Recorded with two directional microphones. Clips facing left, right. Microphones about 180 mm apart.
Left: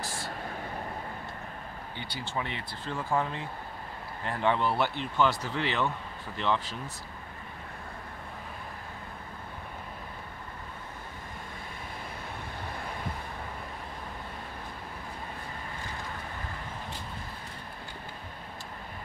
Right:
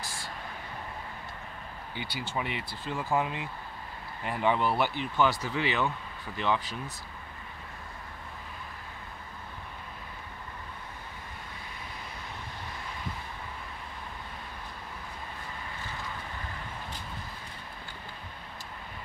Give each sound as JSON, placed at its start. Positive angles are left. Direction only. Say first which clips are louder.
{"t": 2.0, "sound": "speech", "louder": "right 1 dB", "side_deg": -10}